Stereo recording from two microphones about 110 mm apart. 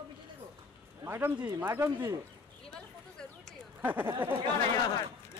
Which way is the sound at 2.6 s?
5° left (ahead or behind).